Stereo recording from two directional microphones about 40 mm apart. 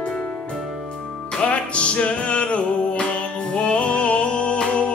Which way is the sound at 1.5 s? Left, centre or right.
Left.